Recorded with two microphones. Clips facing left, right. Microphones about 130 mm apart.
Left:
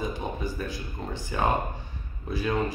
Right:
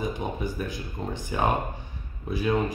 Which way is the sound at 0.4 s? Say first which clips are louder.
Right 1 dB; 20° right (ahead or behind).